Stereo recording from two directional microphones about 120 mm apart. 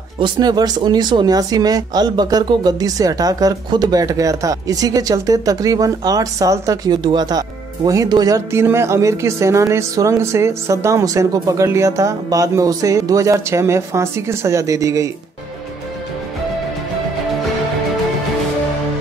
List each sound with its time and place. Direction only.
0.2 s speech: 35° right (ahead or behind)
8.5 s speech: 20° right (ahead or behind)